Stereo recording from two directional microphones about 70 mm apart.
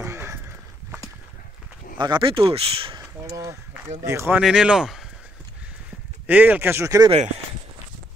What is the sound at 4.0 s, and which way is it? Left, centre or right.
Speech, right.